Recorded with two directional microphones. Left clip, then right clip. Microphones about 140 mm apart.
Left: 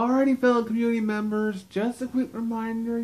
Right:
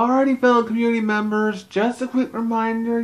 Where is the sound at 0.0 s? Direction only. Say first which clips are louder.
Right 5 dB; 20° right (ahead or behind).